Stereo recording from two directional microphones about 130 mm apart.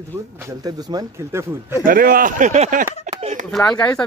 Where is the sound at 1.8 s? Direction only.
90° right.